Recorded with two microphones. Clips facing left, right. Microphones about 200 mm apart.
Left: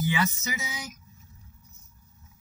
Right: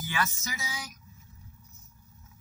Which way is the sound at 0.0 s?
15° left (ahead or behind).